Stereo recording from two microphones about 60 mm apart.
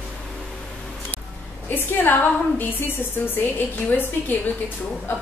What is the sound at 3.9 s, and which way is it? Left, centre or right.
Speech, left.